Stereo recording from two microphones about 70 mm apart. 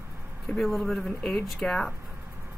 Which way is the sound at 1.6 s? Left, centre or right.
Centre.